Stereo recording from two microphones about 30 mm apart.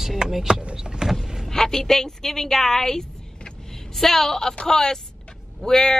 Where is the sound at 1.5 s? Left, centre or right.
Centre.